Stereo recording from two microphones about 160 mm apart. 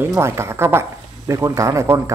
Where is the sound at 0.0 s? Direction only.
15° right (ahead or behind).